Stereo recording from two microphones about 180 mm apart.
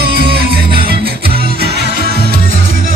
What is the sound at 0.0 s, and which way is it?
Music, 60° right (ahead or behind).